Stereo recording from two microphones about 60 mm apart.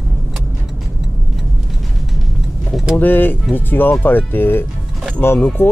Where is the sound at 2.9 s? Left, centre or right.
Left.